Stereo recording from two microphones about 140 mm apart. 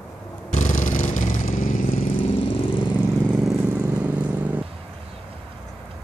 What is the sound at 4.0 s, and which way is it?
Vehicle, 10° right (ahead or behind).